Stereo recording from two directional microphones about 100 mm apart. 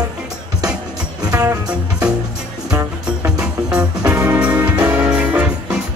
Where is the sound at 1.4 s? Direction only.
35° right (ahead or behind).